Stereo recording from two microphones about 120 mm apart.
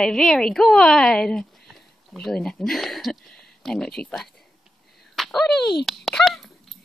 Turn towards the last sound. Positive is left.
turn(degrees=0)  # may be behind; listen again after turning